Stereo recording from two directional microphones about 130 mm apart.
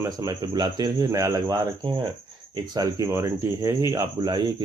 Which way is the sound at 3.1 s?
20° right (ahead or behind).